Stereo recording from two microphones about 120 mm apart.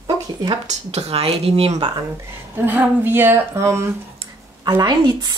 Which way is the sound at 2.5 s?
15° right (ahead or behind).